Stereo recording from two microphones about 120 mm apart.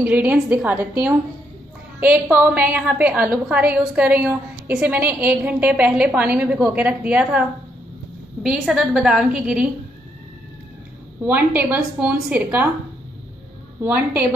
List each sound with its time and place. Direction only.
0.0 s a woman's voice: 15° right (ahead or behind)
11.2 s a woman's voice: 15° right (ahead or behind)
13.7 s a woman's voice: 15° right (ahead or behind)